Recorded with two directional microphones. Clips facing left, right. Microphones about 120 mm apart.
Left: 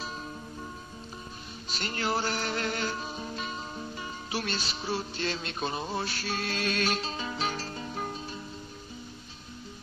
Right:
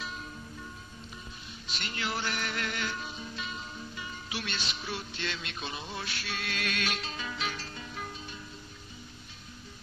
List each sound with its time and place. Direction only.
1.7 s music: 40° left (ahead or behind)